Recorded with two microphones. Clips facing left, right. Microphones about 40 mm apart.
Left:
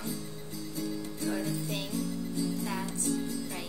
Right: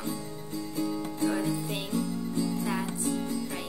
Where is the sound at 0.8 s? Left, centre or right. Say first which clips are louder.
Right 6 dB; right.